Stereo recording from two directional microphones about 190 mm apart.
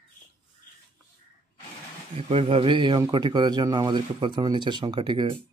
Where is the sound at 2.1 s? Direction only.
30° right (ahead or behind).